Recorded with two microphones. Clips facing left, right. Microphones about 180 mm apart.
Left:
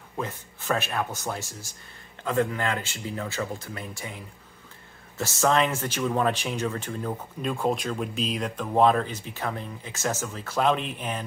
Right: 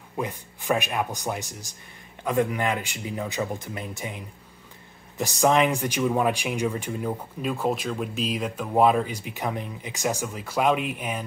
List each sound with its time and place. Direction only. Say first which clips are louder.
0.2 s speech: right 2 dB; 15° right (ahead or behind)